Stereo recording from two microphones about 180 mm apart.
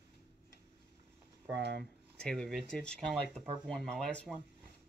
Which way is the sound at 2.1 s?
5° left (ahead or behind).